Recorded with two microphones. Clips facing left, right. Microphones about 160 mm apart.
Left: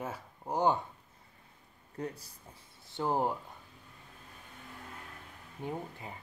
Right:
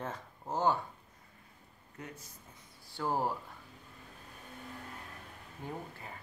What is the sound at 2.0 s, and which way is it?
Speech, 35° left (ahead or behind).